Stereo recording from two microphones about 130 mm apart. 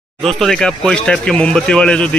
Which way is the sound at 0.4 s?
5° left (ahead or behind).